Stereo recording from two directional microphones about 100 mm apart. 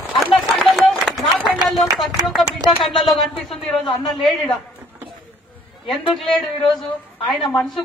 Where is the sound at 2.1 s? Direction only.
35° right (ahead or behind).